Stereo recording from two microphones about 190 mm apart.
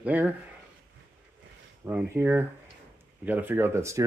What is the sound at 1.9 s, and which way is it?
Speech, 10° right (ahead or behind).